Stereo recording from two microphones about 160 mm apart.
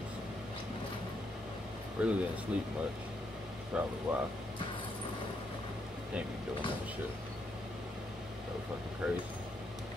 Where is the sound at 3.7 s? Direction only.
5° right (ahead or behind).